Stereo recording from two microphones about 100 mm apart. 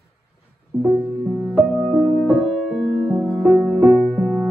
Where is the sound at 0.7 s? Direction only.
10° right (ahead or behind).